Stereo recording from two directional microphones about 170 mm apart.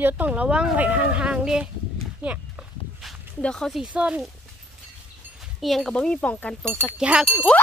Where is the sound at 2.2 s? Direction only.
5° right (ahead or behind).